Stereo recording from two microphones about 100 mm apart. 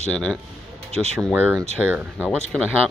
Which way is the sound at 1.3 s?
15° right (ahead or behind).